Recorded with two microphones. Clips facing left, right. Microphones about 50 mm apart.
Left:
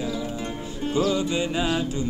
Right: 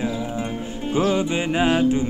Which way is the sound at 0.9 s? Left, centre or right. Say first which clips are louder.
Right 3 dB; right.